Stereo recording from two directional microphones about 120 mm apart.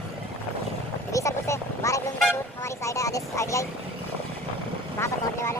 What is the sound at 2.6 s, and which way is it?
Speech, 25° left (ahead or behind).